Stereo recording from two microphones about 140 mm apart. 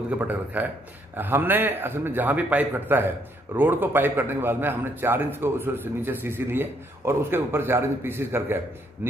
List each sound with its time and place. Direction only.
0.2 s a man's voice: 10° right (ahead or behind)